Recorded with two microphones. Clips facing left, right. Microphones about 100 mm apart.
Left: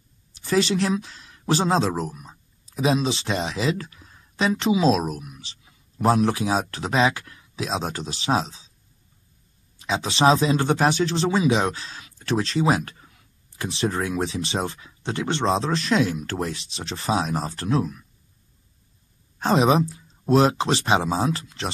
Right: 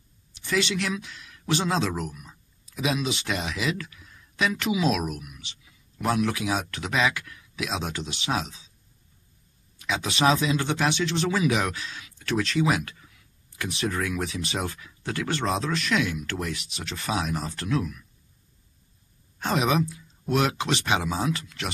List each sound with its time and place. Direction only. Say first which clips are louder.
0.3 s speech: left 5 dB; 35° left (ahead or behind)
9.8 s speech: left 3 dB; 30° left (ahead or behind)
19.4 s speech: left 5 dB; 30° left (ahead or behind)